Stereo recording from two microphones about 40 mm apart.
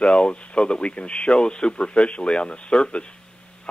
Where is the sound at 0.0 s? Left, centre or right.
Left.